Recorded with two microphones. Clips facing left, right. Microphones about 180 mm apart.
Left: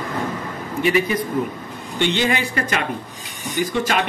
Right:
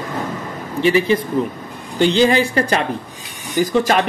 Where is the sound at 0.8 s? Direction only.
30° right (ahead or behind).